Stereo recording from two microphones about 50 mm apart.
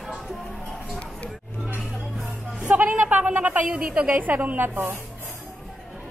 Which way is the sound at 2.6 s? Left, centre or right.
Right.